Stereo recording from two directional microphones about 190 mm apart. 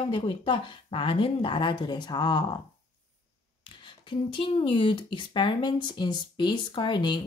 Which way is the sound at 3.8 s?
25° left (ahead or behind).